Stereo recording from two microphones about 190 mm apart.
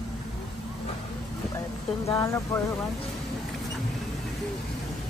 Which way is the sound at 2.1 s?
15° left (ahead or behind).